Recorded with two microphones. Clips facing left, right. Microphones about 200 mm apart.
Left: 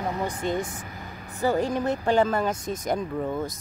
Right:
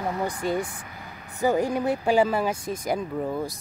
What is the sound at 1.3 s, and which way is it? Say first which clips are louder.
Speech: right 1 dB; 15° right (ahead or behind).